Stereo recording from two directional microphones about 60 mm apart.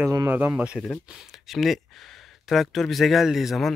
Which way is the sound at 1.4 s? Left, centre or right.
Centre.